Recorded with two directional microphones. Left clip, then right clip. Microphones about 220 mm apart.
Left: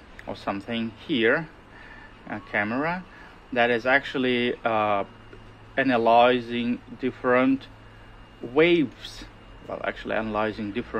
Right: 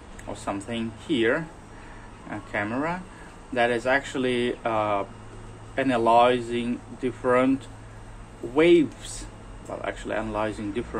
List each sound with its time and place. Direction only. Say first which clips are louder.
0.3 s speech: left 1 dB; 50° left (ahead or behind)
8.5 s speech: right 1 dB; 50° left (ahead or behind)